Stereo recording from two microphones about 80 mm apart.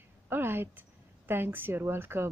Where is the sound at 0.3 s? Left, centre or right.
Right.